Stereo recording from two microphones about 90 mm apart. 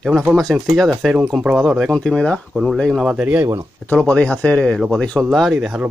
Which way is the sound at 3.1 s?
20° right (ahead or behind).